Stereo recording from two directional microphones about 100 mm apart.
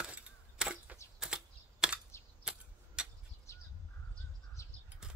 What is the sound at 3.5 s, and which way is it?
Bird, 30° left (ahead or behind).